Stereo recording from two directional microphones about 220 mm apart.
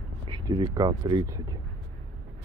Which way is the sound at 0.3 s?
20° right (ahead or behind).